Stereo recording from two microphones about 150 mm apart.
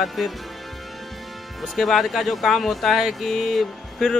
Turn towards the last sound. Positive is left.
turn(degrees=0)  # may be behind; listen again after turning